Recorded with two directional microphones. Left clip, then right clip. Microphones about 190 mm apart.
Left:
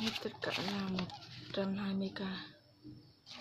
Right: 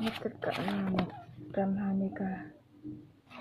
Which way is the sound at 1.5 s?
5° left (ahead or behind).